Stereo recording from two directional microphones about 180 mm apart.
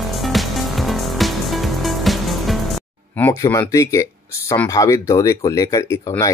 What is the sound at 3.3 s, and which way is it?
Speech, 20° left (ahead or behind).